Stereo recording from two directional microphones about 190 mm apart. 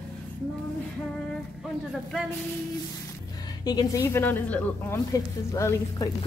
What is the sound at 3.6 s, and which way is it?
A woman's voice, 20° left (ahead or behind).